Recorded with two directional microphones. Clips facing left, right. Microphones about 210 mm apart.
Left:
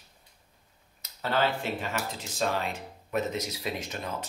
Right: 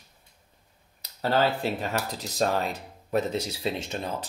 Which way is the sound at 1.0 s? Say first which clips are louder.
Right 5 dB; 35° right (ahead or behind).